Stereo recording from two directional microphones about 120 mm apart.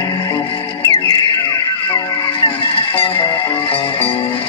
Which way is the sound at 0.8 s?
30° left (ahead or behind).